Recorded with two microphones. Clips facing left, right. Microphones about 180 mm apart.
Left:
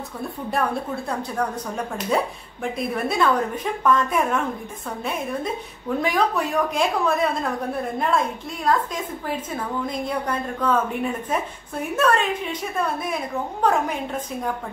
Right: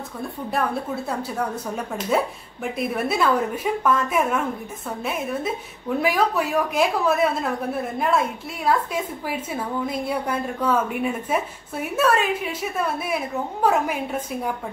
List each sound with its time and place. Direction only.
0.5 s a woman's voice: 5° right (ahead or behind)